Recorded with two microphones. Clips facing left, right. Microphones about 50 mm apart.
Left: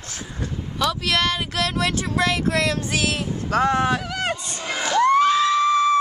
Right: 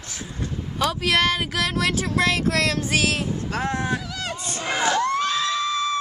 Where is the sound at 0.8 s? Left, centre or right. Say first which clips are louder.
Right 1 dB; centre.